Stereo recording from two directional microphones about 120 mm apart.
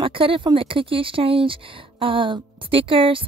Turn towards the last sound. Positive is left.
turn(degrees=-50)  # may be behind; listen again after turning